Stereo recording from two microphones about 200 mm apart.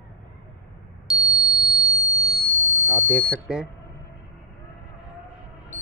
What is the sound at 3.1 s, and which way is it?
Speech, 5° left (ahead or behind).